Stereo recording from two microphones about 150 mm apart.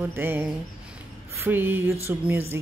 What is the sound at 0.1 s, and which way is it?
Speech, 15° right (ahead or behind).